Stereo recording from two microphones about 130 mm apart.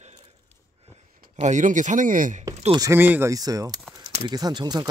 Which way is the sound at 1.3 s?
65° right (ahead or behind).